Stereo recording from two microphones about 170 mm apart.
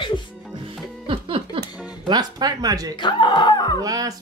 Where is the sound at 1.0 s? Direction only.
30° right (ahead or behind).